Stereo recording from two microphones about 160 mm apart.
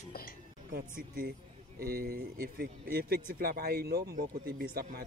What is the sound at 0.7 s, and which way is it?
Speech, 60° right (ahead or behind).